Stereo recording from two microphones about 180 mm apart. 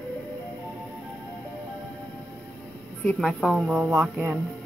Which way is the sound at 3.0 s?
5° left (ahead or behind).